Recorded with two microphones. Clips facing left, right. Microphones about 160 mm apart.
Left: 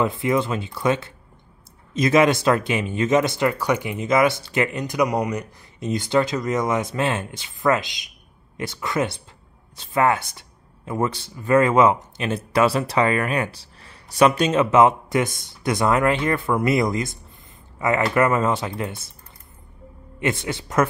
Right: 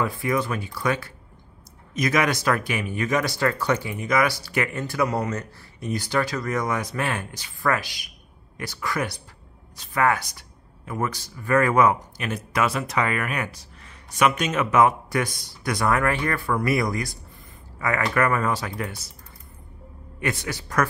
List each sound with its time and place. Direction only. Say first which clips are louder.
0.0 s speech: left 4 dB; 25° left (ahead or behind)
20.2 s speech: left 4 dB; 25° left (ahead or behind)